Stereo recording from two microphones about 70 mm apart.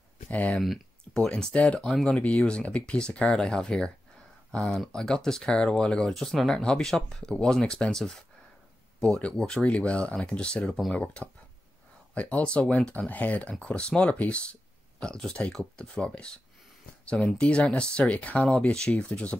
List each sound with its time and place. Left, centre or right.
0.3 s speech: centre
1.9 s speech: centre
2.1 s speech: left